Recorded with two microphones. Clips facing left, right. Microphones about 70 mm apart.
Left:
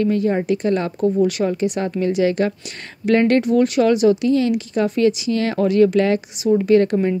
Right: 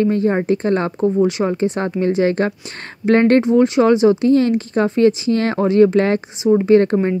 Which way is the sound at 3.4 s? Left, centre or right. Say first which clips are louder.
Right 3 dB; right.